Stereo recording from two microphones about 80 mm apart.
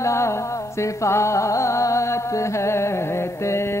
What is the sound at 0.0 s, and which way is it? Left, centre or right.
Music, left.